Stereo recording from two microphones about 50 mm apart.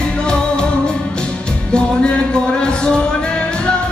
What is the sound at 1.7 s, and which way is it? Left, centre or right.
Music, centre.